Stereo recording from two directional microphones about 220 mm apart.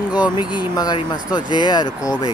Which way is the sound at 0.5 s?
20° left (ahead or behind).